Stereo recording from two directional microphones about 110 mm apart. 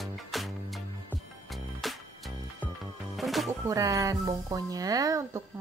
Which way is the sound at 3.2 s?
Centre (ahead or behind).